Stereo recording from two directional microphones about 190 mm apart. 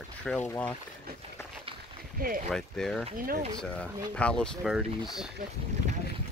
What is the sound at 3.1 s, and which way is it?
Speech, 50° right (ahead or behind).